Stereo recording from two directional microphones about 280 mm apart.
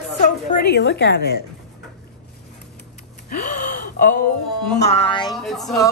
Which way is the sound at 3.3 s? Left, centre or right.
Left.